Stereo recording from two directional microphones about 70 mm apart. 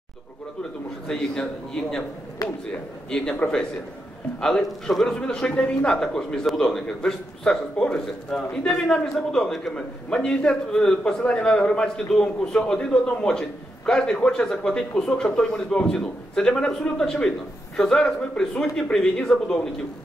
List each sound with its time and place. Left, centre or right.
1.0 s a man's voice: centre
3.1 s a man's voice: centre